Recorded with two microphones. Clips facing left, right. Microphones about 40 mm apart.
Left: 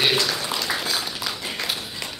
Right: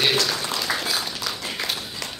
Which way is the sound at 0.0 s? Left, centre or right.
Centre.